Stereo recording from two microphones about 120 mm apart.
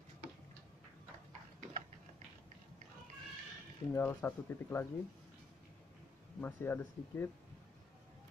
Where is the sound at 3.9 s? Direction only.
20° left (ahead or behind).